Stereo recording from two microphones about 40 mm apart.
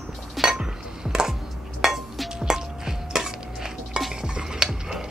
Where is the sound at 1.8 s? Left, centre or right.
Centre.